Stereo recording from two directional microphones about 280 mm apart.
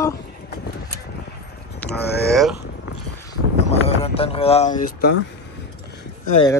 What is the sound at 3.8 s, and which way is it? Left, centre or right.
Speech, left.